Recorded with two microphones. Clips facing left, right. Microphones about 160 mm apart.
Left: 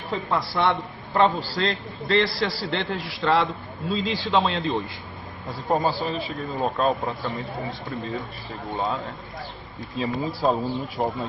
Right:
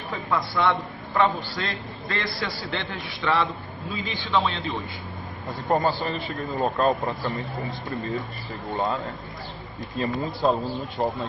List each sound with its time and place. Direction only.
0.6 s a man's voice: 25° left (ahead or behind)
3.9 s a man's voice: 85° left
4.2 s a man's voice: 35° left (ahead or behind)
5.5 s speech: centre (ahead or behind)